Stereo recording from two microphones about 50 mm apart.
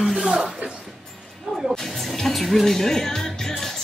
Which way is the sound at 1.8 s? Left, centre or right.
Centre.